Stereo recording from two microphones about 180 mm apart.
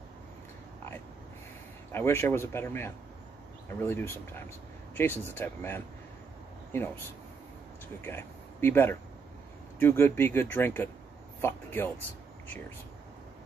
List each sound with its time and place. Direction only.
1.9 s speech: 15° left (ahead or behind)
8.0 s speech: 10° left (ahead or behind)